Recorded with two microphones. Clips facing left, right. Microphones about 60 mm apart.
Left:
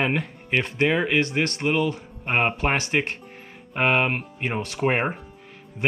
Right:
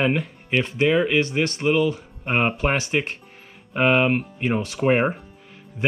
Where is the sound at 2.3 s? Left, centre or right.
Left.